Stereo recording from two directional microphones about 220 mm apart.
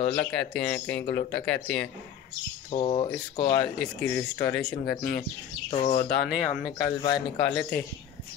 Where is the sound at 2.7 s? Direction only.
25° left (ahead or behind).